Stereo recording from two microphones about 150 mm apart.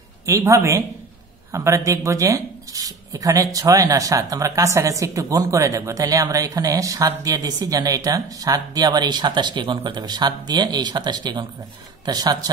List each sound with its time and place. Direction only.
0.3 s speech: 20° right (ahead or behind)